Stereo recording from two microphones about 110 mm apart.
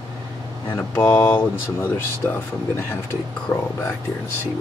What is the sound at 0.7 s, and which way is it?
Speech, 25° left (ahead or behind).